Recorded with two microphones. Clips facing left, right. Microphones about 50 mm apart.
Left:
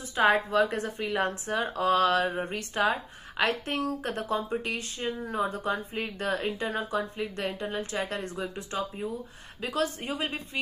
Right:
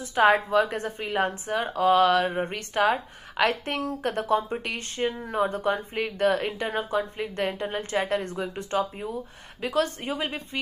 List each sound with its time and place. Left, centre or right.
0.1 s a woman's voice: right
1.8 s a woman's voice: right